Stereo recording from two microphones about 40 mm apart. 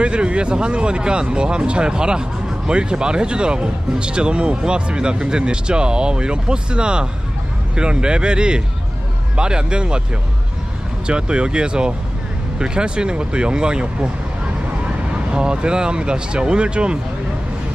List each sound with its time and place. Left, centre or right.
0.0 s speech: right
11.1 s speech: right
15.3 s speech: right